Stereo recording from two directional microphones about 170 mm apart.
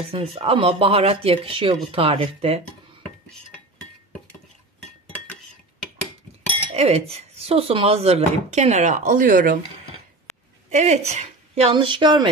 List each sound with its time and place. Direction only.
0.1 s speech: 35° right (ahead or behind)
6.7 s speech: 35° right (ahead or behind); by 9.6 s 55° right (ahead or behind)
10.7 s speech: 40° right (ahead or behind); by 12.3 s 25° right (ahead or behind)